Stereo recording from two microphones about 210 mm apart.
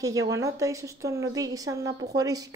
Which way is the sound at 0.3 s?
15° right (ahead or behind).